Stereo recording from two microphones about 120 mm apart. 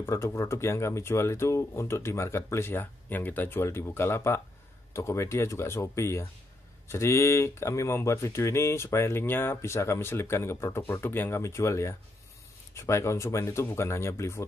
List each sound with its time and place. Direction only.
0.0 s speech: 20° left (ahead or behind)